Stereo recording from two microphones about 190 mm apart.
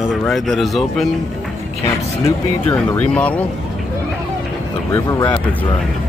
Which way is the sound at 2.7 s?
5° left (ahead or behind).